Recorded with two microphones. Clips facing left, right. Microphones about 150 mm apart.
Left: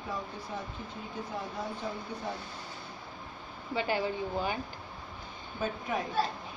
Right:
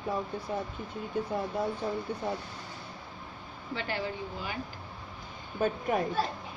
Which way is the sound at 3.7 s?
15° left (ahead or behind).